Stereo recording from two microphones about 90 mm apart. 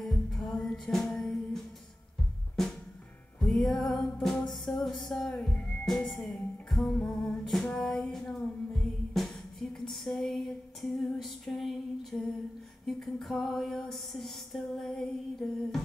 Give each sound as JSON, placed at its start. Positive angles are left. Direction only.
{"t": 0.0, "sound": "music", "side_deg": 5}
{"t": 3.3, "sound": "music", "side_deg": 5}
{"t": 5.9, "sound": "music", "side_deg": 5}